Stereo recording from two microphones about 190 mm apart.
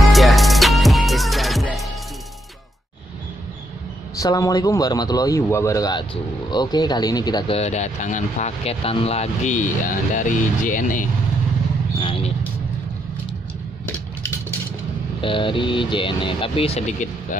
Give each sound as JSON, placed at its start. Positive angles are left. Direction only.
{"t": 0.0, "sound": "music", "side_deg": 0}
{"t": 4.2, "sound": "speech", "side_deg": 20}
{"t": 12.0, "sound": "a sound", "side_deg": 30}
{"t": 15.2, "sound": "speech", "side_deg": 25}